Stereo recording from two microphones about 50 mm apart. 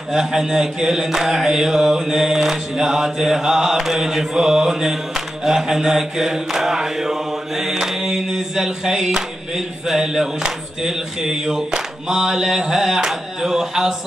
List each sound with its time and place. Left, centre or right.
0.1 s mantra: centre